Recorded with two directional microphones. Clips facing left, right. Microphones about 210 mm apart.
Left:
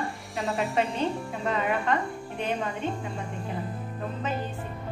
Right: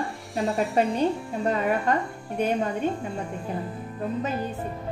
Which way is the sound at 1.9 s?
40° right (ahead or behind).